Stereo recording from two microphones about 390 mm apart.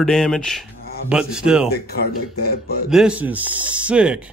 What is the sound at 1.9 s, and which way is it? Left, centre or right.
Speech, left.